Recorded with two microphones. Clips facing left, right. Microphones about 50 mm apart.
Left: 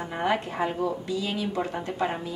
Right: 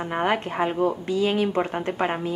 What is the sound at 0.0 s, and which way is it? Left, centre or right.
Speech, right.